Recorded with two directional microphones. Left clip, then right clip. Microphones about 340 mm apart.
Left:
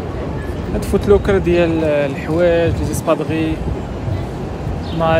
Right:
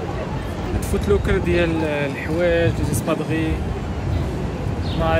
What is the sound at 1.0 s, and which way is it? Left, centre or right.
Speech, centre.